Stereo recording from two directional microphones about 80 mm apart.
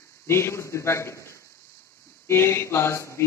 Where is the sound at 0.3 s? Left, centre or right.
Left.